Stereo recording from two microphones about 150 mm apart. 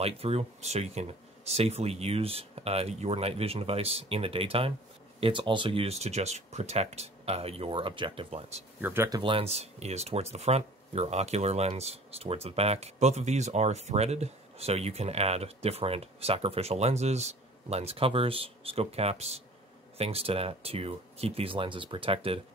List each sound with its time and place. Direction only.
0.0 s speech: 40° right (ahead or behind)
8.8 s speech: 15° right (ahead or behind)
9.1 s speech: 35° right (ahead or behind)